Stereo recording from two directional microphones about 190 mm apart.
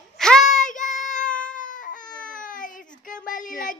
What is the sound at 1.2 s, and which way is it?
Cat, 5° left (ahead or behind).